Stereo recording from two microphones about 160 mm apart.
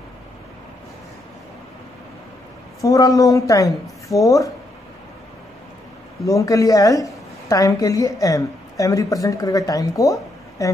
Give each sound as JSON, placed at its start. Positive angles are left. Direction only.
{"t": 2.8, "sound": "a woman's voice", "side_deg": 20}
{"t": 6.2, "sound": "a woman's voice", "side_deg": 20}